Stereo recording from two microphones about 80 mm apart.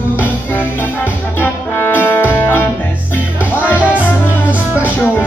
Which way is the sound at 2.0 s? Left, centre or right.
Left.